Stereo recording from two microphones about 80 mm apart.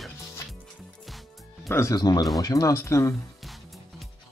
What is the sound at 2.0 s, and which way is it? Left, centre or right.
Speech, left.